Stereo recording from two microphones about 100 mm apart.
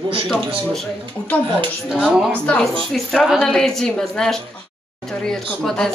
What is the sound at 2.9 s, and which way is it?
A woman's voice, centre (ahead or behind).